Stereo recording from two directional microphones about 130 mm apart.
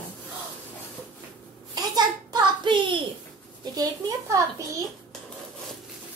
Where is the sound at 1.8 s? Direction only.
30° right (ahead or behind).